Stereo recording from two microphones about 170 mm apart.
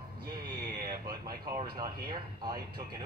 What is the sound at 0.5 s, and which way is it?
Speech, 65° right (ahead or behind).